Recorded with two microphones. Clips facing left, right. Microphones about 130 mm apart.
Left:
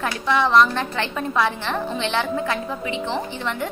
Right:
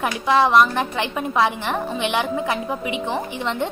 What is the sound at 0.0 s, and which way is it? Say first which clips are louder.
A woman's voice: right 3 dB; 15° right (ahead or behind).